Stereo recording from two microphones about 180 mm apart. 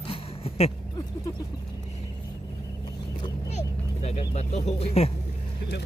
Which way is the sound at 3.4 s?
40° left (ahead or behind).